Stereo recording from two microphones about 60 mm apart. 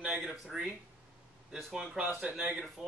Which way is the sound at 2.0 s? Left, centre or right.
Right.